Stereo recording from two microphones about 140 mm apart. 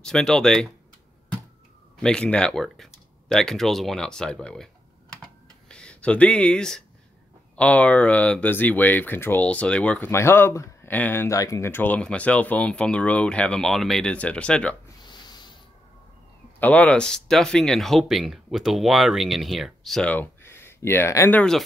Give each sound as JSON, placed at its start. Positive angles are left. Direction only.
{"t": 0.0, "sound": "speech", "side_deg": 5}
{"t": 2.0, "sound": "speech", "side_deg": 5}
{"t": 5.7, "sound": "speech", "side_deg": 5}
{"t": 15.0, "sound": "a sound", "side_deg": 30}
{"t": 16.5, "sound": "speech", "side_deg": 10}
{"t": 21.4, "sound": "speech", "side_deg": 5}